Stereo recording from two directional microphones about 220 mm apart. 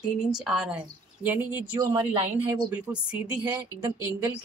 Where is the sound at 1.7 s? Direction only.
20° right (ahead or behind).